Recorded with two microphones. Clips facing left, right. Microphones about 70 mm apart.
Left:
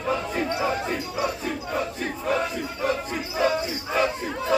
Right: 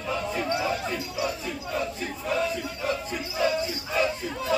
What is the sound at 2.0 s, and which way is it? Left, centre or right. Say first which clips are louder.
Battle cry: left 3 dB; left.